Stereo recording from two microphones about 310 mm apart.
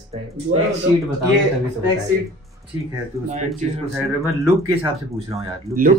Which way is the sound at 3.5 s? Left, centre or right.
Centre.